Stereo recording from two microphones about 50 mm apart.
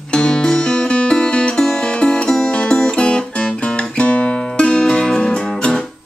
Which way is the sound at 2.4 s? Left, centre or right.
Centre.